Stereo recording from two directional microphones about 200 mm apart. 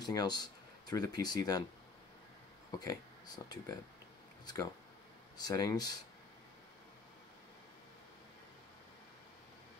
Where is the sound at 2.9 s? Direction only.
20° left (ahead or behind).